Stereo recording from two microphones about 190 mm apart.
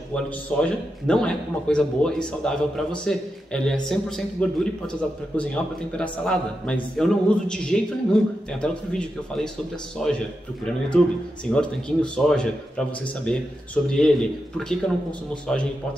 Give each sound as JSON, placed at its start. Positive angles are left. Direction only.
{"t": 0.1, "sound": "a man's voice", "side_deg": 5}